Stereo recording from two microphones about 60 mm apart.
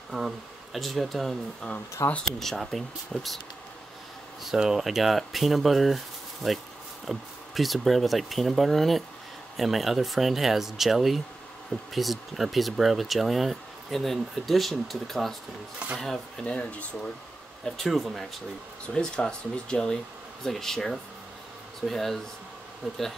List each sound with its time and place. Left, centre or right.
0.1 s speech: centre
2.0 s speech: left
2.3 s speech: centre
4.5 s speech: centre
16.4 s speech: left
17.6 s speech: centre
18.9 s speech: centre